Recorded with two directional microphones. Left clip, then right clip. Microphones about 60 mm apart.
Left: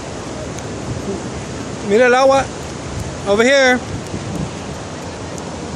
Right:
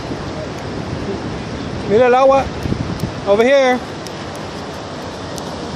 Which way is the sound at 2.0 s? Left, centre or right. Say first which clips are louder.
Right 1 dB; left.